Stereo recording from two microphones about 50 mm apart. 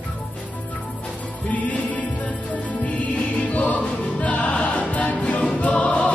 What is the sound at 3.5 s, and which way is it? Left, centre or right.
Music, left.